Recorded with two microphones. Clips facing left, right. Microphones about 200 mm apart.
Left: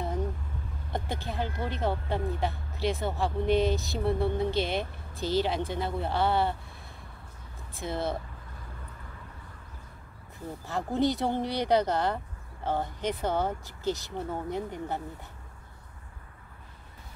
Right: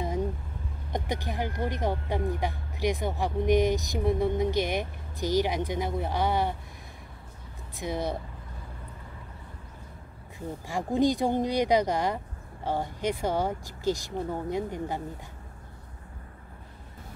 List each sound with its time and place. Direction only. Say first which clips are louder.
0.9 s speech: right 2 dB; 15° right (ahead or behind)
7.8 s speech: right 1 dB; 15° right (ahead or behind)
10.7 s speech: right 2 dB; 15° right (ahead or behind)